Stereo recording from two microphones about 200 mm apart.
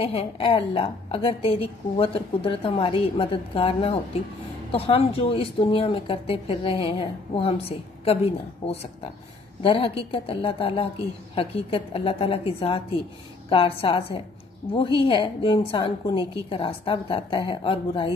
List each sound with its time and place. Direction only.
0.0 s a woman's voice: 30° left (ahead or behind)